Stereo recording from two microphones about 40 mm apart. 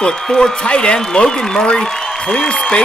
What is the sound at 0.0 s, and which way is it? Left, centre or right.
Speech, centre.